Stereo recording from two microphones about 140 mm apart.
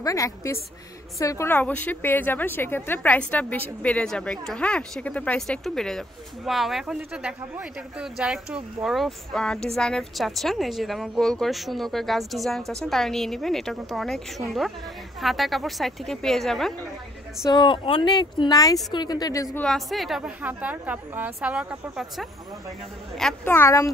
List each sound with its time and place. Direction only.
0.0 s a woman's voice: 20° left (ahead or behind); by 16.7 s centre (ahead or behind)
17.5 s speech: 35° left (ahead or behind)
19.5 s a woman's voice: 5° left (ahead or behind)
23.4 s speech: 20° left (ahead or behind)